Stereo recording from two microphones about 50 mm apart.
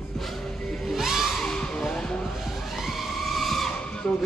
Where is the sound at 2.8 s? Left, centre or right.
Centre.